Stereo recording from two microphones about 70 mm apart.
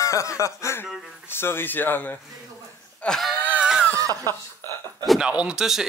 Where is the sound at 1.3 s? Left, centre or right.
Left.